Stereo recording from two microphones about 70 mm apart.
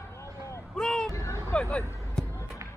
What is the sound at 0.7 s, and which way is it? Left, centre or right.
Vehicle, centre.